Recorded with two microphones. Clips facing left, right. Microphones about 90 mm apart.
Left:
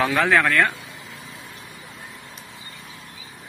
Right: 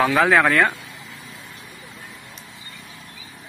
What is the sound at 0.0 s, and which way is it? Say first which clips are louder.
Speech: right 3 dB; 5° right (ahead or behind).